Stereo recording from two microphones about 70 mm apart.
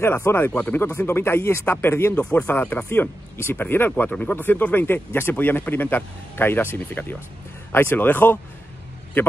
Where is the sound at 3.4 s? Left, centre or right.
Left.